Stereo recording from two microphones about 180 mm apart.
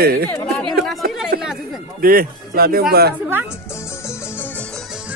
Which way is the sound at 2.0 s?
55° right (ahead or behind).